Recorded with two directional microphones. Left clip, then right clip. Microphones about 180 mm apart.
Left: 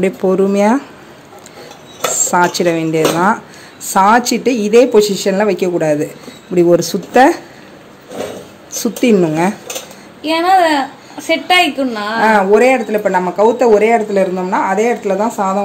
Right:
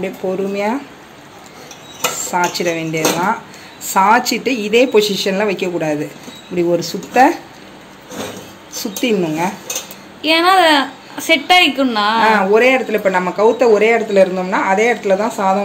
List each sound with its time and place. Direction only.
0.0 s a woman's voice: 50° left (ahead or behind)
2.3 s a woman's voice: 45° left (ahead or behind)
8.7 s a woman's voice: 55° left (ahead or behind)
10.2 s a woman's voice: 10° right (ahead or behind)
12.3 s speech: 50° left (ahead or behind)